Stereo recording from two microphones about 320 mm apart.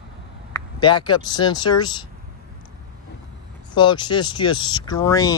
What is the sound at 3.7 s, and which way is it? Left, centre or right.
Speech, centre.